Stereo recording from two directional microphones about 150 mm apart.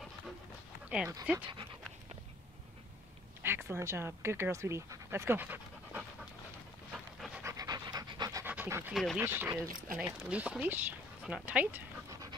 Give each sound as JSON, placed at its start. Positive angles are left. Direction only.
{"t": 0.8, "sound": "speech", "side_deg": -10}
{"t": 3.4, "sound": "speech", "side_deg": -15}
{"t": 6.9, "sound": "dog", "side_deg": -5}
{"t": 7.4, "sound": "pant", "side_deg": -25}
{"t": 8.9, "sound": "speech", "side_deg": 0}
{"t": 9.2, "sound": "speech", "side_deg": -15}
{"t": 12.1, "sound": "dog", "side_deg": -25}